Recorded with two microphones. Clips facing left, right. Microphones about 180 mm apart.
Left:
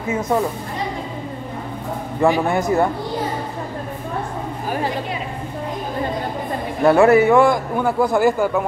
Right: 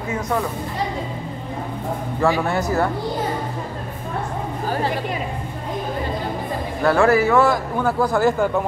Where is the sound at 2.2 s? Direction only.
20° left (ahead or behind).